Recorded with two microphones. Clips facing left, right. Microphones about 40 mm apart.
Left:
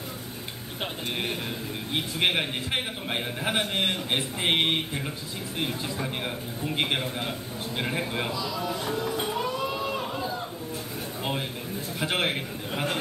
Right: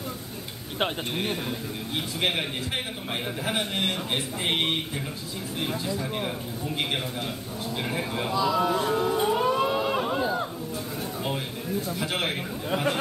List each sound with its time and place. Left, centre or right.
2.1 s a man's voice: centre
6.6 s a man's voice: left
8.4 s speech: right
8.9 s music: right
9.5 s a sound: right
12.0 s a man's voice: centre